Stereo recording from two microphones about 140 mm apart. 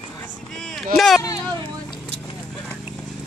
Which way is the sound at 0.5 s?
5° left (ahead or behind).